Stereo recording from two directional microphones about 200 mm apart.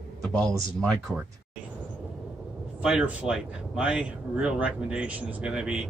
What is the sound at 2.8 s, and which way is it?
Speech, 5° right (ahead or behind).